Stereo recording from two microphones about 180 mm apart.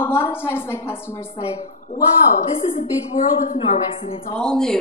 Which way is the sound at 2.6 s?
30° left (ahead or behind).